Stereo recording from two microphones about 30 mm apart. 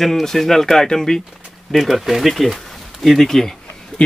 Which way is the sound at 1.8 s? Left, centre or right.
Centre.